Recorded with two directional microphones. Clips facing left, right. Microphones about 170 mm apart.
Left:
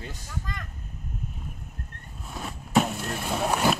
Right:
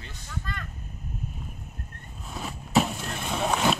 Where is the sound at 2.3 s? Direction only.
Centre (ahead or behind).